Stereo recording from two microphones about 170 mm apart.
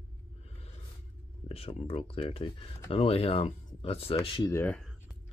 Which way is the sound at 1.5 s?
35° left (ahead or behind).